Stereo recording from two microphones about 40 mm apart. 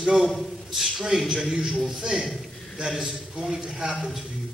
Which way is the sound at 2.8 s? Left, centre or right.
Centre.